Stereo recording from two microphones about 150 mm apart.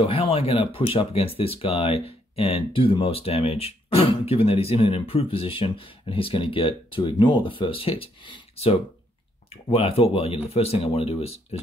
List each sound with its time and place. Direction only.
0.0 s speech: 40° left (ahead or behind)